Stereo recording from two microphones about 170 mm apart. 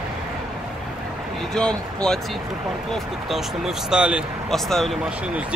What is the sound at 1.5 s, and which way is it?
Speech, 5° left (ahead or behind).